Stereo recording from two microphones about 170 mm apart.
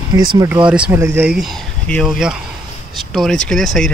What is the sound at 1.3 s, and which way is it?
Speech, centre (ahead or behind).